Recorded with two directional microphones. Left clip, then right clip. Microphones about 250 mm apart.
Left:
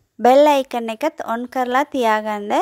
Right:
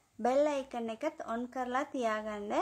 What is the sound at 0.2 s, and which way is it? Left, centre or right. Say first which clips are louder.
Speech: left 18 dB; left.